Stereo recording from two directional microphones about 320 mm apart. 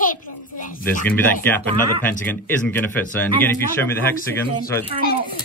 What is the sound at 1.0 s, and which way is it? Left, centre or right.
Speech, centre.